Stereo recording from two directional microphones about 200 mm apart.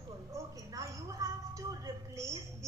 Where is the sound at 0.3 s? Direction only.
15° right (ahead or behind).